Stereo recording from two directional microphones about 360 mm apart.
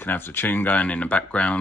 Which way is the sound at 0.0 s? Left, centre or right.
Centre.